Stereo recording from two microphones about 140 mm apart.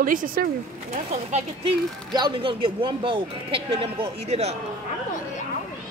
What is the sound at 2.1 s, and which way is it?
Speech, 35° right (ahead or behind).